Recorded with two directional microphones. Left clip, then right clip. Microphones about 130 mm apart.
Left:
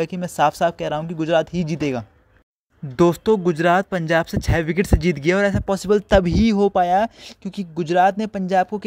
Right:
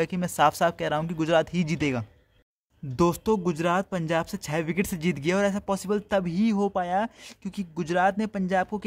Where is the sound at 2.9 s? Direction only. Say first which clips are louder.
Left 7 dB; 35° left (ahead or behind).